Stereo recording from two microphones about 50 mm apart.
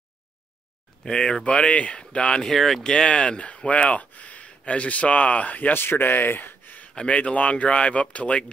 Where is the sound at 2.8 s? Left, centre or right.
Centre.